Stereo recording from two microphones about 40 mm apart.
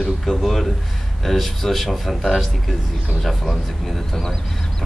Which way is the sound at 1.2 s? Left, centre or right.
Centre.